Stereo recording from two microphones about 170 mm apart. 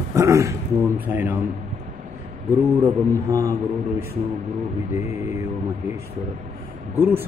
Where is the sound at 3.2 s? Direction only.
20° right (ahead or behind).